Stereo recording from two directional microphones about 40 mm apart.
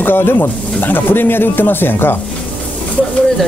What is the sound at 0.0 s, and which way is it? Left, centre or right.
Speech, left.